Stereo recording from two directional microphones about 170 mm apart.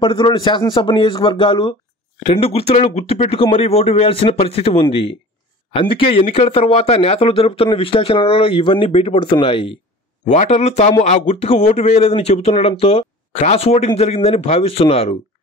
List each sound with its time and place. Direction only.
0.0 s speech: 25° left (ahead or behind)
10.3 s speech: 45° left (ahead or behind)